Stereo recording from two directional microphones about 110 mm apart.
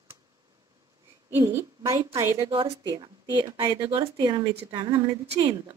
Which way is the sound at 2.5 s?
55° right (ahead or behind).